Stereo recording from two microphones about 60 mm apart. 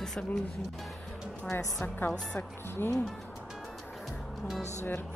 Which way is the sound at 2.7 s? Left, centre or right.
Left.